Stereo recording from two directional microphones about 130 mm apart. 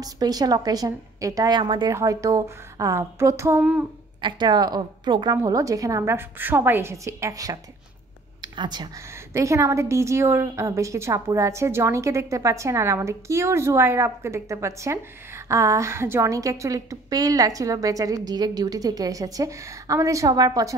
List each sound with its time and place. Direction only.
0.0 s a woman's voice: 30° right (ahead or behind)
1.9 s a woman's voice: 25° right (ahead or behind)
4.2 s a woman's voice: 35° right (ahead or behind)
9.1 s a woman's voice: 20° right (ahead or behind)